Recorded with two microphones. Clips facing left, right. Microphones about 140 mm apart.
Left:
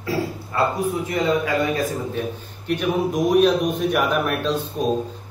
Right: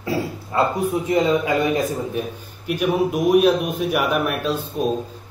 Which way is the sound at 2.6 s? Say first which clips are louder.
Right 2 dB; 10° right (ahead or behind).